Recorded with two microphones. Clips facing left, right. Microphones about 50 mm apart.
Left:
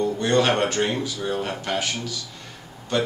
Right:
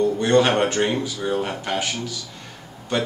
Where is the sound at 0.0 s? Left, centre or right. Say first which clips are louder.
Right 3 dB; centre.